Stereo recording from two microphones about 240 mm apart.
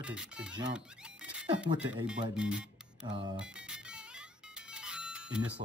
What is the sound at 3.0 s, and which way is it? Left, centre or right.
Speech, right.